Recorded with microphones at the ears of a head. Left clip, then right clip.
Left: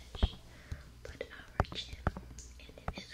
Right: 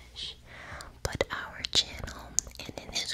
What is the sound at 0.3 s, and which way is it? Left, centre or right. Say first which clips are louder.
Whispering: right 9 dB; right.